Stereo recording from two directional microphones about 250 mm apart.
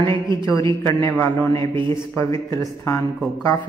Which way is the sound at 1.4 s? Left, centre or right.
Centre.